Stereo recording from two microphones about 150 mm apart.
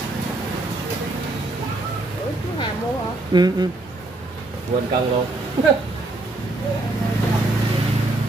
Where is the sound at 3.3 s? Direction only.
25° right (ahead or behind).